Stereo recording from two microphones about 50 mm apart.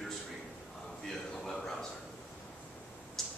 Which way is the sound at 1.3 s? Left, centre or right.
Centre.